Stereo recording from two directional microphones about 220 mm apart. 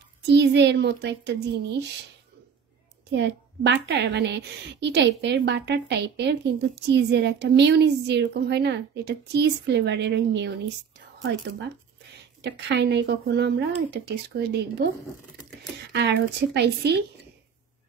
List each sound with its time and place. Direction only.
0.3 s a woman's voice: 50° right (ahead or behind)
3.1 s a woman's voice: 50° right (ahead or behind)
12.4 s a woman's voice: 50° right (ahead or behind)
15.9 s a woman's voice: 50° right (ahead or behind)